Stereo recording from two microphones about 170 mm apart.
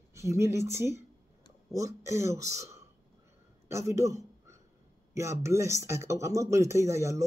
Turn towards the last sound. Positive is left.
turn(degrees=-15)  # may be behind; listen again after turning